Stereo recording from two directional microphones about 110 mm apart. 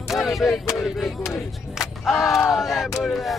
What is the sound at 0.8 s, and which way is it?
Battle cry, centre (ahead or behind).